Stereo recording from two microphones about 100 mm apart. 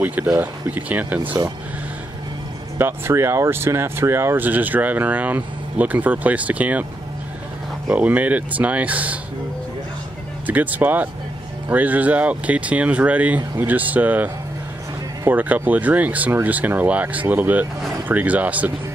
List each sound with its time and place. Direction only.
0.0 s speech: 15° right (ahead or behind)
2.8 s speech: 25° right (ahead or behind)
7.9 s speech: 15° right (ahead or behind)
10.4 s speech: 15° right (ahead or behind)